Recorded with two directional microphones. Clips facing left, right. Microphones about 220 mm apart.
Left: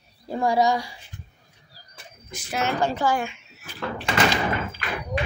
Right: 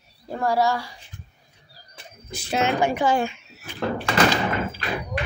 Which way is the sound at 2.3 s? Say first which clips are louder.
Right 6 dB; 30° right (ahead or behind).